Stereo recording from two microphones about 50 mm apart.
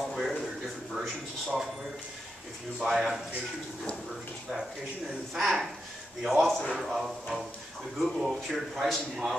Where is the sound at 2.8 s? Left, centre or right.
Centre.